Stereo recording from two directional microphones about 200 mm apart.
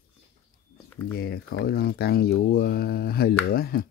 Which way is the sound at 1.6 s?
50° left (ahead or behind).